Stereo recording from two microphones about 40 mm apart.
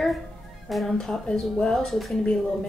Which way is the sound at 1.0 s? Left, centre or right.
Centre.